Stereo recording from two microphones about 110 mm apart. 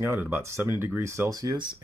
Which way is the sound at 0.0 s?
20° right (ahead or behind).